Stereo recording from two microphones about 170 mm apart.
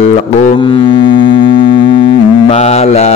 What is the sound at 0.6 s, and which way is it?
Music, 30° left (ahead or behind).